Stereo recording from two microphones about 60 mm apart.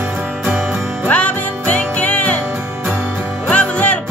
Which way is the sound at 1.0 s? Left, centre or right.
Left.